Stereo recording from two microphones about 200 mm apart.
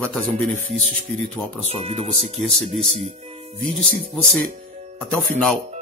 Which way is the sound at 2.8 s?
35° right (ahead or behind).